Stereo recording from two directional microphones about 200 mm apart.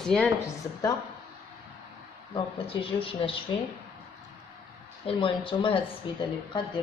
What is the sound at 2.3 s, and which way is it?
Speech, 25° left (ahead or behind).